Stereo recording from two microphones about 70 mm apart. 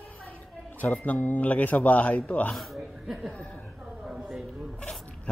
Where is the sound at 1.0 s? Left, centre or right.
Left.